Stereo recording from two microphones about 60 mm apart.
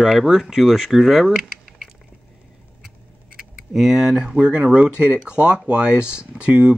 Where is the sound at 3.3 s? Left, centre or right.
Centre.